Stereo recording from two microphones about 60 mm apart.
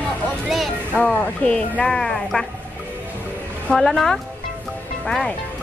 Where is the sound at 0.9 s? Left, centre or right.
Left; by 2.5 s centre.